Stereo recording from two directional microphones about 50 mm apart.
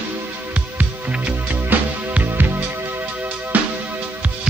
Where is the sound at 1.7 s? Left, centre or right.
Right.